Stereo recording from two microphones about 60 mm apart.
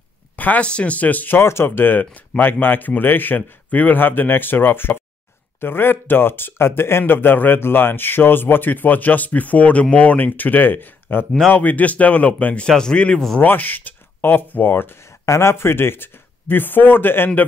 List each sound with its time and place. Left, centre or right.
0.4 s a man's voice: left
1.4 s speech: left
12.6 s a man's voice: centre
13.4 s speech: left